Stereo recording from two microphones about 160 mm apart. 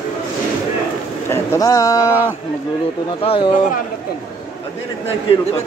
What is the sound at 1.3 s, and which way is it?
Speech, 15° left (ahead or behind).